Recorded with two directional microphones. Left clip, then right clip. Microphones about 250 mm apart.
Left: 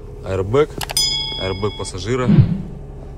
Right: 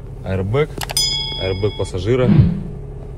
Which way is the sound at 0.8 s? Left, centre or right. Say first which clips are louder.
Even; centre.